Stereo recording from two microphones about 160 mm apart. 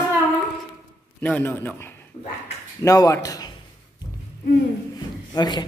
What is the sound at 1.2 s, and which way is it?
A man's voice, 10° left (ahead or behind).